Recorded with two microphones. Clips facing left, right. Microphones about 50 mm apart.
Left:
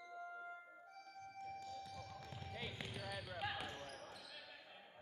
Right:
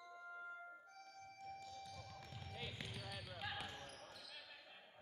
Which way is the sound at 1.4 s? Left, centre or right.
Centre.